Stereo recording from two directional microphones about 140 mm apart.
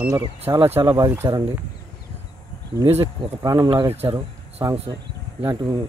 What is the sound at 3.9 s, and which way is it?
Speech, 45° right (ahead or behind).